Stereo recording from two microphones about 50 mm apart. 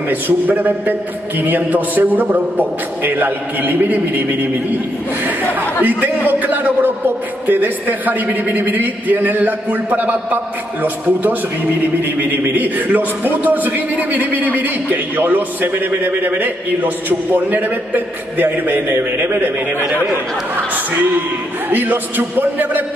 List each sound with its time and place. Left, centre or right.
0.1 s a man's voice: right
5.9 s a man's voice: right
21.6 s a man's voice: right